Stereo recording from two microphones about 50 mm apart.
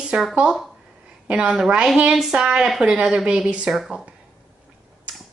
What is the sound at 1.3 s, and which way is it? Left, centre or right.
A woman's voice, centre.